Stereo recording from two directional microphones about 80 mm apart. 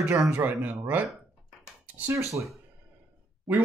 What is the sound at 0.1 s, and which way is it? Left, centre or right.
Speech, right.